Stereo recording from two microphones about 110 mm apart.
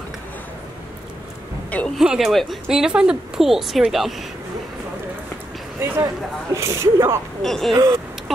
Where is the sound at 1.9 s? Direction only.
5° right (ahead or behind).